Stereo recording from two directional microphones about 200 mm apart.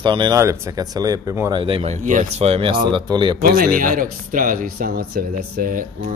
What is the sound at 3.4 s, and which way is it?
Speech, 45° right (ahead or behind).